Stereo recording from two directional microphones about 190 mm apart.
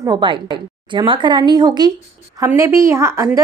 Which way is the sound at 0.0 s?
25° right (ahead or behind).